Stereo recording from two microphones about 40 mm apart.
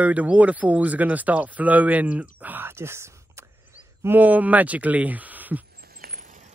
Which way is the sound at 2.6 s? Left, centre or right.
Right.